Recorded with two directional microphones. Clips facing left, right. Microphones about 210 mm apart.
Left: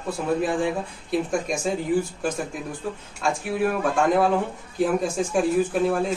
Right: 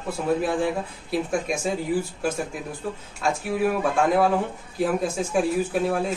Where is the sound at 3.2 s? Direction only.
Centre (ahead or behind).